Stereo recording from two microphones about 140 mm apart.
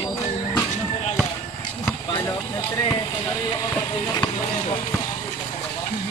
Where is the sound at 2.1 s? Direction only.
20° left (ahead or behind).